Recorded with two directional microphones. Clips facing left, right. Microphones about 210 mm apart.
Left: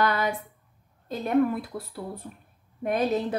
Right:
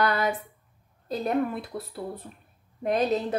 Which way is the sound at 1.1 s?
35° right (ahead or behind).